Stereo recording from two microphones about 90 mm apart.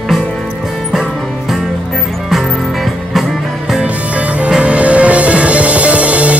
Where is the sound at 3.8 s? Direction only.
15° right (ahead or behind).